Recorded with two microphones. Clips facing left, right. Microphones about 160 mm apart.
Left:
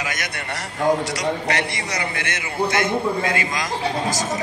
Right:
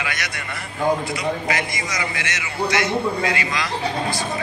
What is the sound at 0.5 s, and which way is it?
A man's voice, 75° left (ahead or behind).